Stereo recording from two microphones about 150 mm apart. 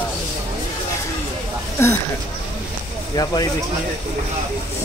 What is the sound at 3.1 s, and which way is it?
Speech, 25° left (ahead or behind).